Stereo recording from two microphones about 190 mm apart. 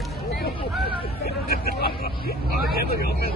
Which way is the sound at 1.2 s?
55° left (ahead or behind).